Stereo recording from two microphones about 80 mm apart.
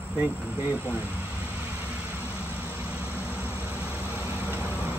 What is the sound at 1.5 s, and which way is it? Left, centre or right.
Vehicle, centre.